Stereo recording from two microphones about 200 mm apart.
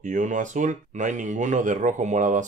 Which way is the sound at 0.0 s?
40° right (ahead or behind).